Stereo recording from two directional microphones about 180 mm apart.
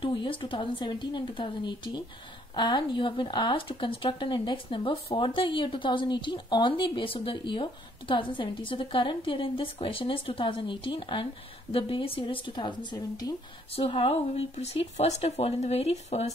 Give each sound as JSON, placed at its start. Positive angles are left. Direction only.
{"t": 0.0, "sound": "speech", "side_deg": 30}
{"t": 13.7, "sound": "speech", "side_deg": 30}